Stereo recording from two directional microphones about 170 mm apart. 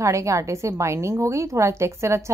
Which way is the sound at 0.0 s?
15° right (ahead or behind).